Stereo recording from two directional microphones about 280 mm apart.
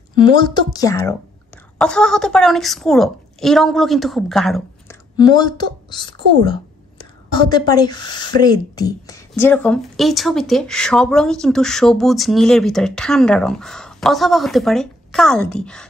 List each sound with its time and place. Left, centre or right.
0.1 s a woman's voice: centre
5.1 s speech: centre
7.3 s speech: centre